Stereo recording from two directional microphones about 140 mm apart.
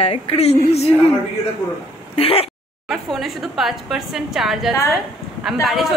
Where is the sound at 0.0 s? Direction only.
45° left (ahead or behind).